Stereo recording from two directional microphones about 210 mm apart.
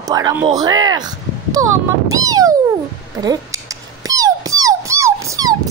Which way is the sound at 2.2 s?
15° right (ahead or behind).